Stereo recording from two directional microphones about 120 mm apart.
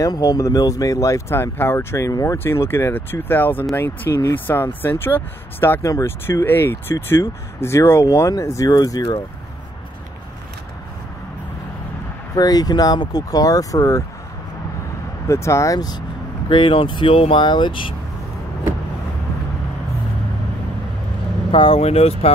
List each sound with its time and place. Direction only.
0.0 s speech: 30° left (ahead or behind)
12.4 s speech: 35° left (ahead or behind)
15.2 s speech: 25° left (ahead or behind)
16.4 s speech: 45° left (ahead or behind)
21.5 s speech: 50° left (ahead or behind)